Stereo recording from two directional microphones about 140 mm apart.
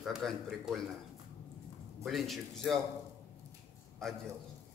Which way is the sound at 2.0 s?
Centre (ahead or behind).